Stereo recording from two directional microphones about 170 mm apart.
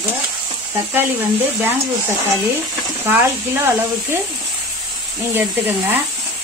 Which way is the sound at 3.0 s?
15° right (ahead or behind).